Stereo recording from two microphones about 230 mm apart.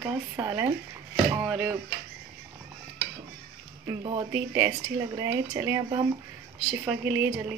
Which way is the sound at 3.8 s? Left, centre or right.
Centre.